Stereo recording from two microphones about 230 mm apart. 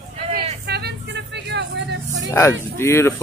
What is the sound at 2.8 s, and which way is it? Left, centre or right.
Speech, centre.